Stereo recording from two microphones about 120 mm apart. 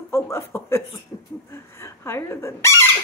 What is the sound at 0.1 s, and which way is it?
Speech, 25° left (ahead or behind).